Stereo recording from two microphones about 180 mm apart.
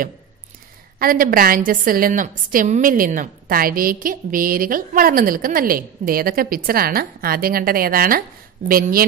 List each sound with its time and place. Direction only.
0.9 s a woman's voice: 50° right (ahead or behind)